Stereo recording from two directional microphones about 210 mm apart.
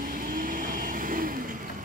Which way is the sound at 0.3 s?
40° right (ahead or behind).